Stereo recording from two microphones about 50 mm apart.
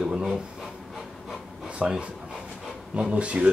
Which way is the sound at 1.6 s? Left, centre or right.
Centre.